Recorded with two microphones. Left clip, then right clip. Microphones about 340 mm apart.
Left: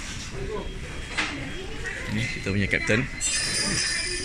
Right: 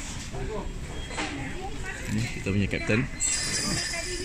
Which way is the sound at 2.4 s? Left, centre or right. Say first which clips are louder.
Left 4 dB; centre.